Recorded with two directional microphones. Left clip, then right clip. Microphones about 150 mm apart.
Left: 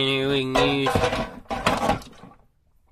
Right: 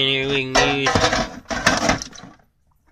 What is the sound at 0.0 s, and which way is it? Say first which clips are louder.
Music: right 3 dB; 35° left (ahead or behind).